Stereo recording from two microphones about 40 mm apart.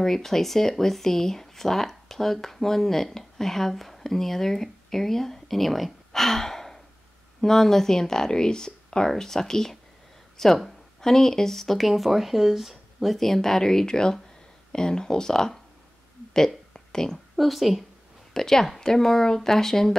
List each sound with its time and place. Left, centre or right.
0.0 s speech: centre
16.3 s a sound: centre
17.4 s a woman's voice: centre
18.3 s speech: centre